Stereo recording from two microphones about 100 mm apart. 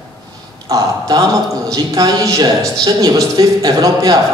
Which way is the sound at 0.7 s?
40° right (ahead or behind).